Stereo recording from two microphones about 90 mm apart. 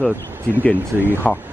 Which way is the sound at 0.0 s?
20° left (ahead or behind).